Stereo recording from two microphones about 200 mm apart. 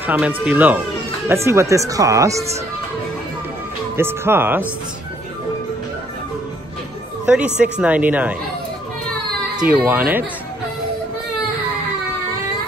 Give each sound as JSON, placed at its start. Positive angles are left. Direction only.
{"t": 0.0, "sound": "speech", "side_deg": -10}
{"t": 3.9, "sound": "speech", "side_deg": -10}
{"t": 7.2, "sound": "speech", "side_deg": -5}
{"t": 9.7, "sound": "speech", "side_deg": -5}